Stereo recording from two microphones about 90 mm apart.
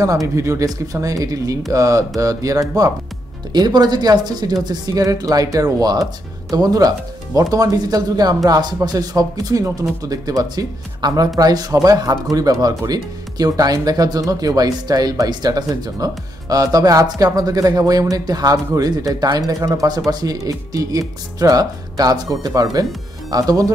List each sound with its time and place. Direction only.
0.0 s speech: 40° right (ahead or behind)
3.5 s speech: 50° right (ahead or behind)